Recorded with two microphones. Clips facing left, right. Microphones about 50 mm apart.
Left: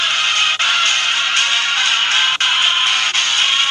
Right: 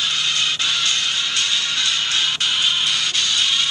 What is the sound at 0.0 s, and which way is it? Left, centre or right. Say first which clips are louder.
Music: left 5 dB; left.